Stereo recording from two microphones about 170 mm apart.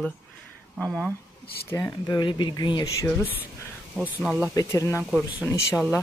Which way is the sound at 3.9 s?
5° right (ahead or behind).